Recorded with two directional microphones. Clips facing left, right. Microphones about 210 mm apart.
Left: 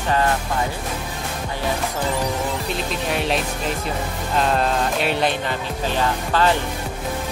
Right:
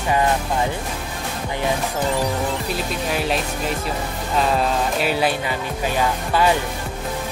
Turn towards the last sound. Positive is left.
turn(degrees=-10)  # may be behind; listen again after turning